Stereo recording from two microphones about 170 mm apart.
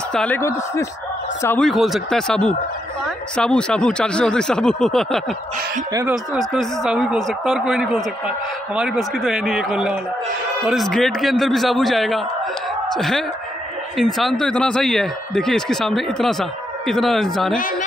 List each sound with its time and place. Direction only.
0.1 s speech: 5° left (ahead or behind)
0.4 s speech: 15° left (ahead or behind)
1.6 s speech: centre (ahead or behind)
6.3 s speech: centre (ahead or behind)